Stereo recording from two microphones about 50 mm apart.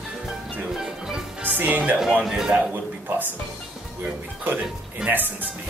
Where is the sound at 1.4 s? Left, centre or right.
Right.